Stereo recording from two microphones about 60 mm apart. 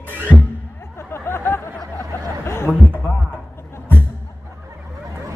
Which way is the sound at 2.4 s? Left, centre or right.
Left.